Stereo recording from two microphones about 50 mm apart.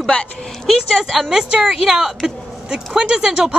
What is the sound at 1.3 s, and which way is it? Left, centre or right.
Speech, centre.